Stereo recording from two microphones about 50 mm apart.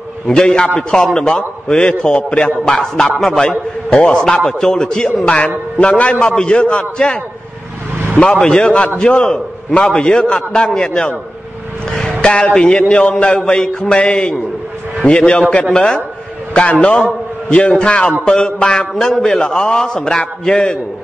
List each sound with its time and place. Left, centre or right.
0.3 s a man's voice: centre
8.2 s a man's voice: centre